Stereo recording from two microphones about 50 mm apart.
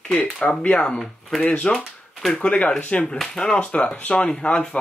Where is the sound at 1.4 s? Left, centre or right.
Left.